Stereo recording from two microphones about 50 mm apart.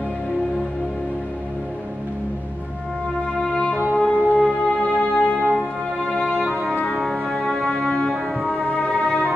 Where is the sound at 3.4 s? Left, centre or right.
Centre.